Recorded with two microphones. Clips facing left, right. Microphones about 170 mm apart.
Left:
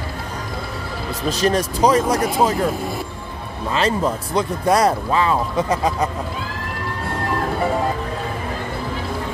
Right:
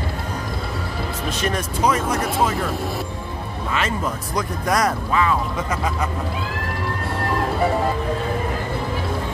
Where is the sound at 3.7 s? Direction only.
30° left (ahead or behind).